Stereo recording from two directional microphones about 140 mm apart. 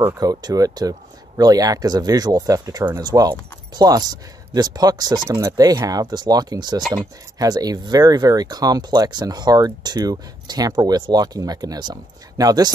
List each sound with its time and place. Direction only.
0.0 s speech: 25° right (ahead or behind)